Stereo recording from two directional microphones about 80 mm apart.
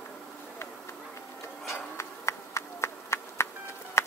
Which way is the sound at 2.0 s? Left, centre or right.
Left.